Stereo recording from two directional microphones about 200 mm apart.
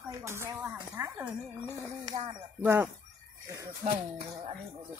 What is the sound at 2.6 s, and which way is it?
Speech, 10° right (ahead or behind).